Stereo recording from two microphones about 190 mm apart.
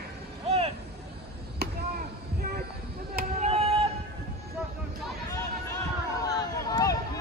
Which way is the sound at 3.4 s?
30° right (ahead or behind).